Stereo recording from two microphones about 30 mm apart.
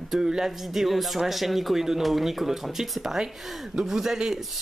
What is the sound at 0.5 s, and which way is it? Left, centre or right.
Speech, centre.